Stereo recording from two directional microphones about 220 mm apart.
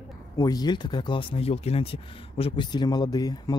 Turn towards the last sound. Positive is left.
turn(degrees=15)  # may be behind; listen again after turning